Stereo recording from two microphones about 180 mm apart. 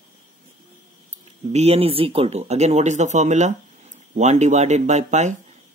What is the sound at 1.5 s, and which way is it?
Speech, 35° right (ahead or behind).